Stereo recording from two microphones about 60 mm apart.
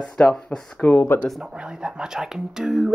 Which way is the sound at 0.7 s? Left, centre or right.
Left.